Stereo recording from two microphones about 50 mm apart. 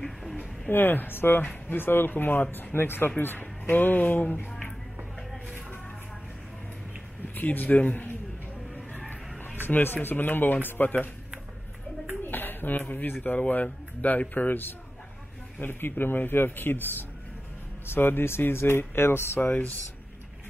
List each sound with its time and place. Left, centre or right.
0.7 s speech: left
4.5 s a sound: centre
7.3 s speech: left
9.7 s speech: left
12.3 s a sound: left
13.2 s speech: left
19.5 s speech: left